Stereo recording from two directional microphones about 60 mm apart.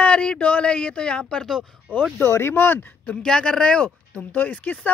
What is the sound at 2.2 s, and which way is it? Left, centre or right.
Speech, left.